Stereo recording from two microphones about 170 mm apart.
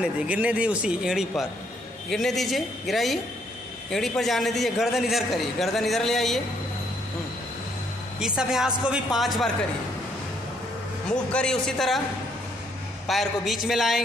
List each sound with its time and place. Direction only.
0.0 s a man's voice: 5° right (ahead or behind)
8.4 s a man's voice: 5° right (ahead or behind)
11.1 s a man's voice: 5° left (ahead or behind)
13.0 s a man's voice: centre (ahead or behind)